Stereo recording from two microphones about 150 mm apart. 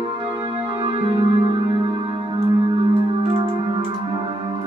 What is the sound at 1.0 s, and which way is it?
Music, 40° right (ahead or behind).